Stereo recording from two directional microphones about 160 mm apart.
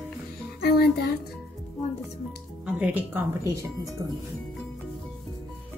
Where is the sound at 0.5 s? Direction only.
80° left.